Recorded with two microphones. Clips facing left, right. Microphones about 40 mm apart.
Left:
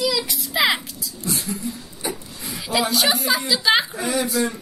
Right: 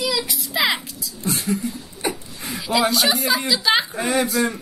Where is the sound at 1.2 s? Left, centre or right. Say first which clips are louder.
Right 4 dB; right.